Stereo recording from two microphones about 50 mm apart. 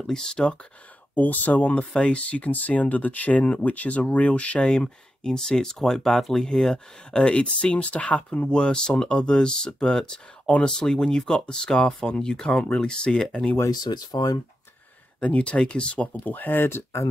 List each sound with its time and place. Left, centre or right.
0.0 s speech: centre
1.1 s speech: left; by 6.8 s centre
7.1 s speech: centre
8.5 s speech: centre
15.1 s speech: left